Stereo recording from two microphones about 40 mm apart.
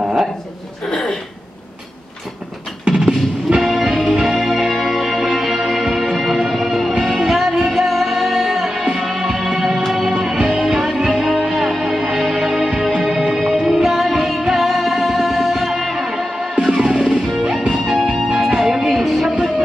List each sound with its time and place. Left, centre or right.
0.8 s a sound: centre
2.9 s music: right
3.6 s music: centre
12.0 s music: centre
19.2 s music: centre